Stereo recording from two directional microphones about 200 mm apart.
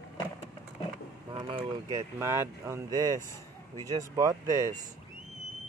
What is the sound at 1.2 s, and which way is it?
Speech, 25° right (ahead or behind).